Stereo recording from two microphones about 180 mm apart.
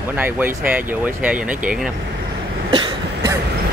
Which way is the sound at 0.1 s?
10° right (ahead or behind).